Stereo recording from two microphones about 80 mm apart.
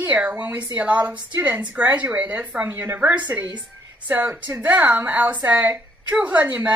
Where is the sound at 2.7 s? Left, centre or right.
Right.